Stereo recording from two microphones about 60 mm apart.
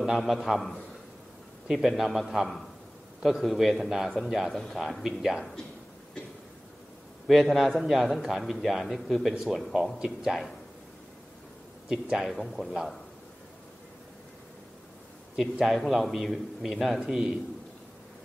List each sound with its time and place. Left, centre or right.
0.0 s a man's voice: centre
7.2 s a man's voice: centre
11.9 s a man's voice: centre
15.6 s a man's voice: centre